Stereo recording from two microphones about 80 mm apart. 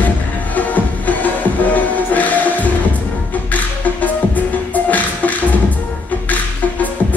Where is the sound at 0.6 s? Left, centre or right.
Centre.